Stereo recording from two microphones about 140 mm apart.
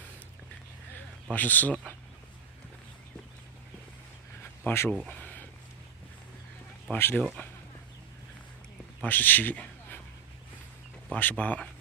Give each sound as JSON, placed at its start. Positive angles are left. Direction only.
{"t": 1.3, "sound": "speech", "side_deg": 10}
{"t": 4.4, "sound": "a sound", "side_deg": 15}
{"t": 6.9, "sound": "speech", "side_deg": 15}
{"t": 9.0, "sound": "a man's voice", "side_deg": 15}
{"t": 11.1, "sound": "speech", "side_deg": 10}